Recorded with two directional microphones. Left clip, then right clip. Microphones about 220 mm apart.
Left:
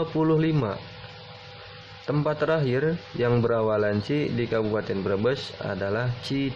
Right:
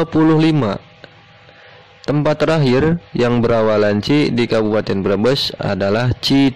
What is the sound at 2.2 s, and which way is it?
A man's voice, 40° right (ahead or behind).